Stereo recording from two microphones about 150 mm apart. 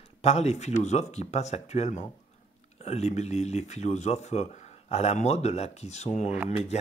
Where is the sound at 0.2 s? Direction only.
45° left (ahead or behind).